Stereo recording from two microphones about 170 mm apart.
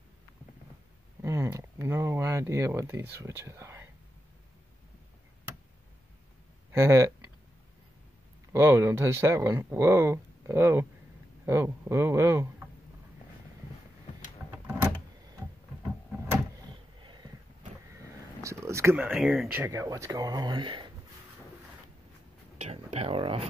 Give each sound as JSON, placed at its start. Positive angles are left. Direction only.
{"t": 1.2, "sound": "speech", "side_deg": -15}
{"t": 6.7, "sound": "speech", "side_deg": -15}
{"t": 8.5, "sound": "speech", "side_deg": -15}
{"t": 17.0, "sound": "a sound", "side_deg": -25}
{"t": 17.9, "sound": "speech", "side_deg": -15}
{"t": 22.6, "sound": "speech", "side_deg": -40}